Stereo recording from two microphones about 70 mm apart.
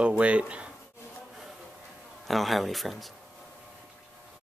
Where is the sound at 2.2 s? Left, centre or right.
Centre.